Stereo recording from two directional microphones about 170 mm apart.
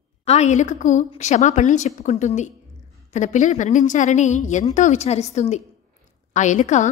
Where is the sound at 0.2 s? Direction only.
40° left (ahead or behind).